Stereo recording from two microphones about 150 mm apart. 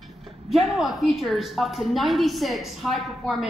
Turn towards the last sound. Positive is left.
turn(degrees=0)  # may be behind; listen again after turning